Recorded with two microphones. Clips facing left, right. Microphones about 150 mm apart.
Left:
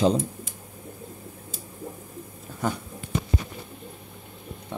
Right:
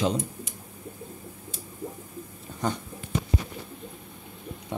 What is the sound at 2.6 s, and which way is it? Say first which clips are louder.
Speech: left 1 dB; 5° left (ahead or behind).